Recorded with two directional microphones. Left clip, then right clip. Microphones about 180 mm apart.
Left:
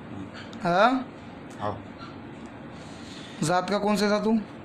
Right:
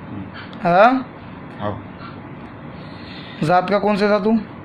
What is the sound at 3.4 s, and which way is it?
A man's voice, 15° left (ahead or behind).